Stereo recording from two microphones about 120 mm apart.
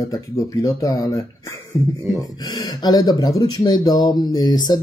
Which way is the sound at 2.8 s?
35° left (ahead or behind).